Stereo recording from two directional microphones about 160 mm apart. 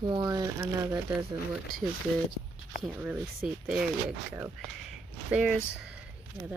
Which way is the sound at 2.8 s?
5° right (ahead or behind).